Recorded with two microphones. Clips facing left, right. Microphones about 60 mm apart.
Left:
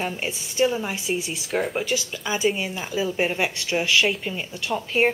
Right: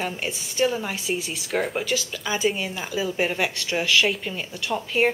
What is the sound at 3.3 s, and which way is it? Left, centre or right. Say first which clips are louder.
A woman's voice: left 1 dB; centre.